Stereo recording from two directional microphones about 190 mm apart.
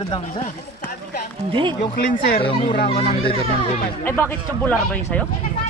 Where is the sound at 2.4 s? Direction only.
30° left (ahead or behind).